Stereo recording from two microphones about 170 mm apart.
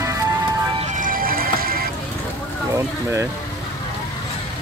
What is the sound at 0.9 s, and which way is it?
Music, 55° right (ahead or behind).